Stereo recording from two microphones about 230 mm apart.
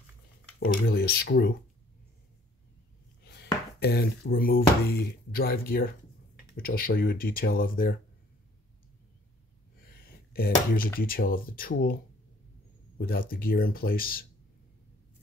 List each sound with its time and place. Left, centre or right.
0.6 s speech: left
3.3 s speech: left
9.9 s a sound: left
11.0 s speech: left